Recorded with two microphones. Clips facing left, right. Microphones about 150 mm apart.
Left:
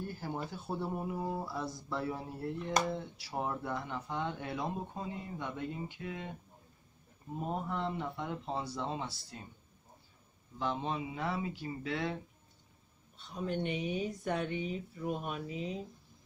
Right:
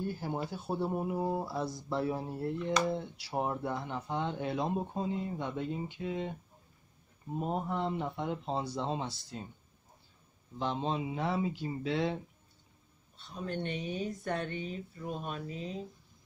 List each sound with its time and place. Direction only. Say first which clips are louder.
0.2 s speech: right 3 dB; 20° right (ahead or behind)
2.8 s speech: even; 45° left (ahead or behind)
3.3 s speech: right 3 dB; 20° right (ahead or behind)
7.4 s speech: right 2 dB; 20° right (ahead or behind)
10.6 s speech: right 2 dB; 25° right (ahead or behind)
13.3 s speech: left 1 dB; 10° left (ahead or behind)